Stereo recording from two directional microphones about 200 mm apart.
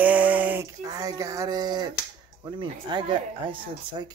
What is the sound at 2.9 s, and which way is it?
Speech, 25° right (ahead or behind).